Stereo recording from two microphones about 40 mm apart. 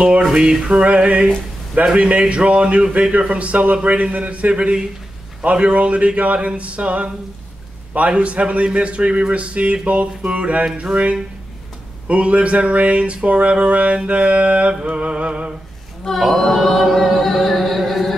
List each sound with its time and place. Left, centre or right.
0.0 s music: right
0.3 s a sound: centre
0.7 s music: right
2.0 s speech: right
8.2 s speech: right
10.8 s music: right
12.1 s speech: right
14.0 s music: right
16.3 s music: centre